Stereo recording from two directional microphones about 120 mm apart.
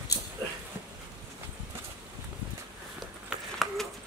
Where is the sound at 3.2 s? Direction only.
Centre (ahead or behind).